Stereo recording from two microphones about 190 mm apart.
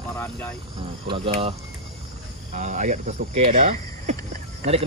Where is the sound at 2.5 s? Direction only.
40° right (ahead or behind).